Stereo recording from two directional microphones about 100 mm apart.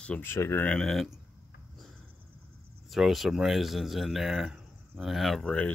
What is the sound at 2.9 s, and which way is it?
Speech, centre (ahead or behind).